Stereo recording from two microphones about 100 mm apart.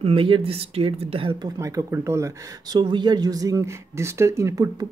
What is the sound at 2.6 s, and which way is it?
Speech, 50° right (ahead or behind).